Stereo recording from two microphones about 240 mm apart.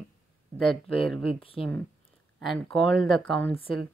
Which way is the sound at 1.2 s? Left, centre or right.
Left.